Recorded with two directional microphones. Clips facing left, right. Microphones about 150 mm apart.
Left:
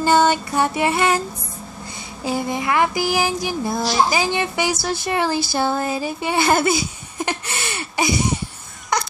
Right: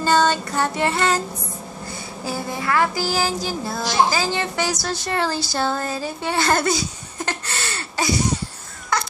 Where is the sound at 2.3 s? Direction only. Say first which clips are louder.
Left 3 dB; 20° left (ahead or behind).